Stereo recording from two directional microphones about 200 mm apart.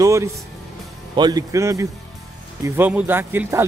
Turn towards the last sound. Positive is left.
turn(degrees=-10)  # may be behind; listen again after turning